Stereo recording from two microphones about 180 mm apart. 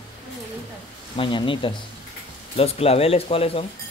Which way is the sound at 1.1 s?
30° left (ahead or behind).